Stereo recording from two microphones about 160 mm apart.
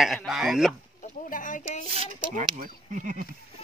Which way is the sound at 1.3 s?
55° left (ahead or behind).